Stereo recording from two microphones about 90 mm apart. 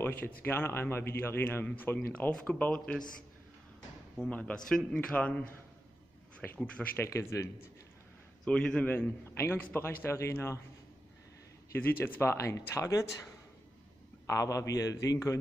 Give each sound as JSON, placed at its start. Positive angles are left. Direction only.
{"t": 0.0, "sound": "a man's voice", "side_deg": 25}
{"t": 4.3, "sound": "a man's voice", "side_deg": 15}
{"t": 7.1, "sound": "a man's voice", "side_deg": 30}
{"t": 8.5, "sound": "a man's voice", "side_deg": 10}
{"t": 8.9, "sound": "speech", "side_deg": 25}
{"t": 11.7, "sound": "speech", "side_deg": 25}
{"t": 14.2, "sound": "a man's voice", "side_deg": 40}